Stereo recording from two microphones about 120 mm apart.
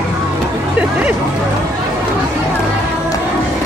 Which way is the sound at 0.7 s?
10° right (ahead or behind).